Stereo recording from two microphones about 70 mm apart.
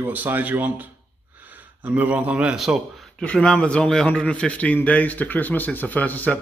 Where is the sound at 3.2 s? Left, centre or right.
Centre.